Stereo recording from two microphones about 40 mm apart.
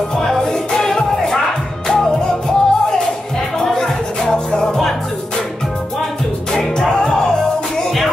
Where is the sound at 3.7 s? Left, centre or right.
Centre.